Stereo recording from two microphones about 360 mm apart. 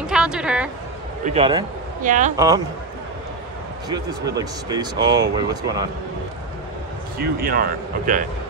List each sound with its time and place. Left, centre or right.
0.0 s a woman's voice: centre
1.2 s speech: centre
2.3 s speech: centre
3.9 s speech: centre
7.2 s speech: right